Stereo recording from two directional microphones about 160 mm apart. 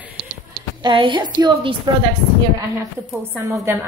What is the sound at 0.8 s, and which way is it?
Speech, 30° right (ahead or behind).